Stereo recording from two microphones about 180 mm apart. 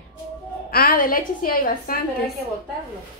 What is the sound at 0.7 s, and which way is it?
A woman's voice, 55° left (ahead or behind).